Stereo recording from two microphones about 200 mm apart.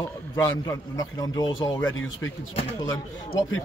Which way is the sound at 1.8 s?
75° left (ahead or behind).